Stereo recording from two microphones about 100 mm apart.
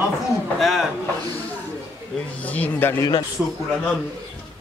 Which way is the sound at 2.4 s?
15° left (ahead or behind).